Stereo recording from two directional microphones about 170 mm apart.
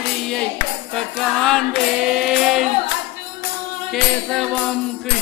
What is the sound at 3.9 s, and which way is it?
Music, centre (ahead or behind).